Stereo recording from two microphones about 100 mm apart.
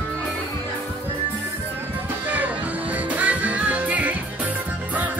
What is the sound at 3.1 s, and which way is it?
Music, 15° right (ahead or behind).